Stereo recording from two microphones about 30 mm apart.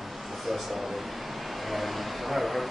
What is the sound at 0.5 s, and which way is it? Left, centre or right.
Speech, centre.